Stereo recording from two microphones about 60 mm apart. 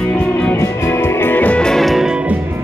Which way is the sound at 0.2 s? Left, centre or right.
Left.